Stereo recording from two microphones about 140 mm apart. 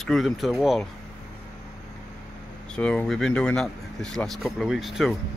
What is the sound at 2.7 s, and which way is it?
Speech, 5° left (ahead or behind).